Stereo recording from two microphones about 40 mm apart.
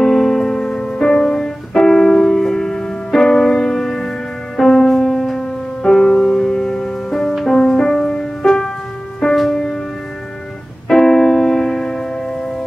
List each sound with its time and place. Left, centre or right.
0.0 s music: centre
9.5 s music: centre
10.9 s piano: centre